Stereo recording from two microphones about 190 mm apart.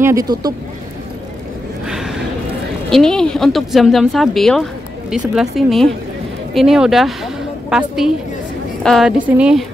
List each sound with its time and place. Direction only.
0.0 s speech: 15° right (ahead or behind)
1.9 s gasp: centre (ahead or behind)
2.9 s speech: 5° left (ahead or behind)